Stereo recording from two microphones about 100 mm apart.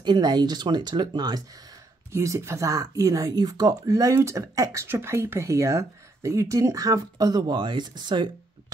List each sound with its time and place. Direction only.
0.0 s speech: 45° right (ahead or behind)
2.1 s speech: 30° right (ahead or behind); by 8.7 s 45° right (ahead or behind)